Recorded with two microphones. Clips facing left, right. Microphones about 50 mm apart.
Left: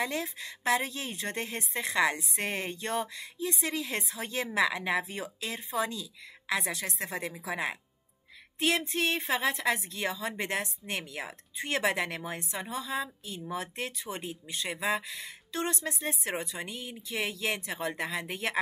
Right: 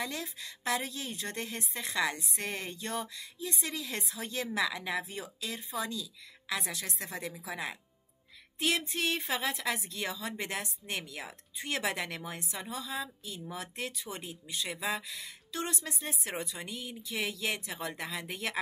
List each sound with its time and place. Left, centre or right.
0.0 s a woman's voice: left
8.5 s music: centre
8.9 s a woman's voice: centre